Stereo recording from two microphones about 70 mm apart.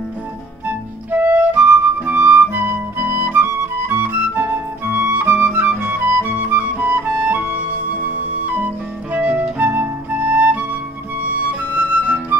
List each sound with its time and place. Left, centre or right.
0.7 s music: right
9.1 s music: right
11.7 s flute: right